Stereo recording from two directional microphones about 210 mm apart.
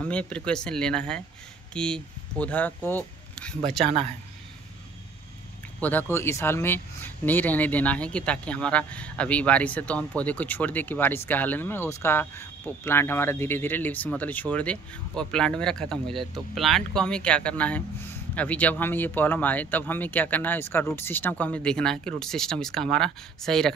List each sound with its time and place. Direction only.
0.0 s speech: 5° left (ahead or behind)
3.8 s speech: 30° right (ahead or behind)
5.8 s speech: 10° left (ahead or behind)